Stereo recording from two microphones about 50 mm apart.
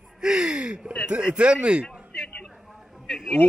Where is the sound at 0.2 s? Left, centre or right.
Centre.